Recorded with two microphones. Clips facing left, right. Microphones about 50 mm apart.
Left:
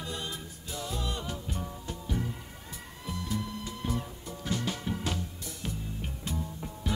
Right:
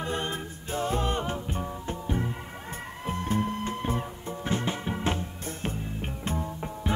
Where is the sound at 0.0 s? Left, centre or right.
Right.